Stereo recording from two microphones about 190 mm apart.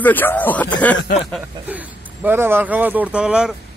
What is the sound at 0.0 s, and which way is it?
Speech, 10° left (ahead or behind).